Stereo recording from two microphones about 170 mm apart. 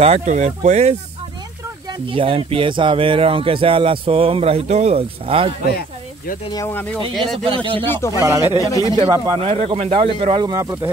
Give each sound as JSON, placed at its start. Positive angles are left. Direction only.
{"t": 0.0, "sound": "speech", "side_deg": -40}
{"t": 1.9, "sound": "speech", "side_deg": -30}
{"t": 5.7, "sound": "snake", "side_deg": 65}
{"t": 6.5, "sound": "speech", "side_deg": 15}
{"t": 7.4, "sound": "speech", "side_deg": -30}
{"t": 8.2, "sound": "speech", "side_deg": -15}